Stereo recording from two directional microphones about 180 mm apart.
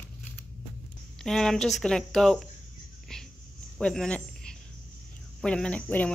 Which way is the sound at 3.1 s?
5° left (ahead or behind).